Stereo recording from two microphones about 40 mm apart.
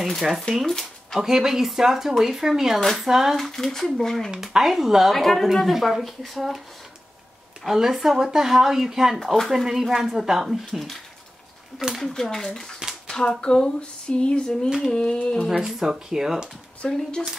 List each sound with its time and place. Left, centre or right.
0.2 s speech: centre
0.7 s speech: centre
1.2 s speech: centre
2.8 s speech: centre
3.1 s speech: centre
3.3 s speech: centre
4.4 s speech: centre
5.1 s speech: centre
7.6 s speech: centre
9.2 s speech: centre
9.5 s speech: centre
12.0 s speech: centre
15.6 s speech: centre
16.8 s speech: centre